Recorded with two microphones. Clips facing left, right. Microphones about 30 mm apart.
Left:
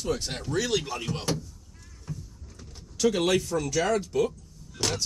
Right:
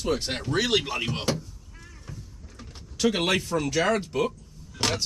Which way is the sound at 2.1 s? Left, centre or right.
Right.